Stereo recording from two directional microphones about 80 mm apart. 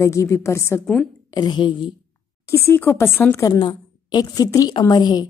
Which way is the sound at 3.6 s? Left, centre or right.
Left.